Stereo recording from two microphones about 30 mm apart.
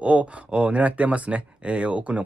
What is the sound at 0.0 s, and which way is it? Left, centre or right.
Speech, right.